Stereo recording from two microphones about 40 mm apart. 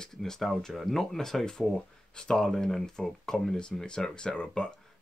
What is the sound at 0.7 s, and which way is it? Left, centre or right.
Speech, centre.